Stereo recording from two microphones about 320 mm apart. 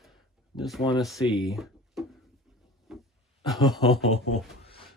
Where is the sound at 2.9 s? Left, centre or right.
Centre.